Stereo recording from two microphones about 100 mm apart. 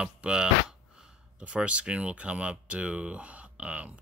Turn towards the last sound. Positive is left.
turn(degrees=-15)  # may be behind; listen again after turning